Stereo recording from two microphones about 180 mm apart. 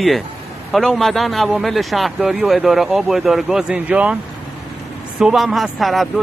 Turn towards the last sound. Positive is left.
turn(degrees=0)  # may be behind; listen again after turning